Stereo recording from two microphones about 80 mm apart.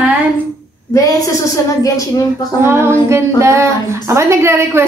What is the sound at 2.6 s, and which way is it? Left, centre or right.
A woman's voice, right.